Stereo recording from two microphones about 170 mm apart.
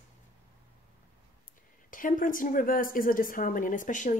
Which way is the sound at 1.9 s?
50° left (ahead or behind).